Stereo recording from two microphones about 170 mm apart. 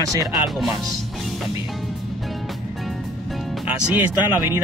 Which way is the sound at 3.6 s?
10° right (ahead or behind).